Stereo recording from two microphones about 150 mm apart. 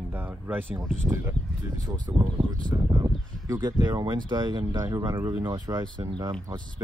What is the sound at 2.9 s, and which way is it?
Speech, 25° right (ahead or behind).